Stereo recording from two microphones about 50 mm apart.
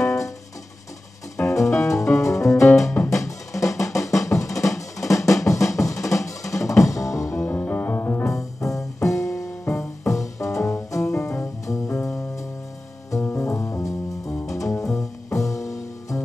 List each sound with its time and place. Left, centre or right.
0.0 s music: left
1.5 s music: left
7.3 s music: left
8.3 s music: left
10.9 s music: left
14.4 s music: left